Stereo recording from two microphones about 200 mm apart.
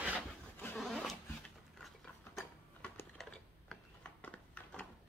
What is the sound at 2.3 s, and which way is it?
Sewing machine, 5° left (ahead or behind).